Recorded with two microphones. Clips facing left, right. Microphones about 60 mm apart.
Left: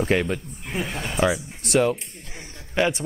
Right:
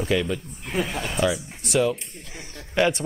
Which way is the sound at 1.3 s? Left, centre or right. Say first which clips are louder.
Left 2 dB; left.